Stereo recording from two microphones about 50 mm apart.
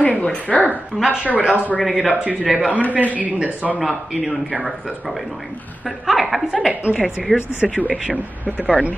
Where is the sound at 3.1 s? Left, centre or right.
Right.